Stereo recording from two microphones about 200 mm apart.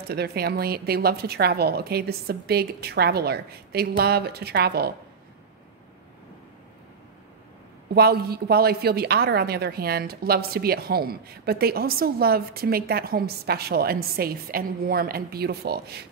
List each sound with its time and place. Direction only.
0.1 s a woman's voice: 55° right (ahead or behind)
7.9 s a woman's voice: 50° right (ahead or behind)